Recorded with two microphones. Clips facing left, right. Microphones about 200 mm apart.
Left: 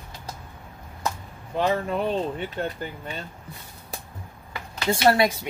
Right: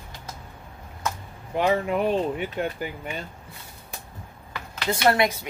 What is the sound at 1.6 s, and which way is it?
Speech, 15° right (ahead or behind).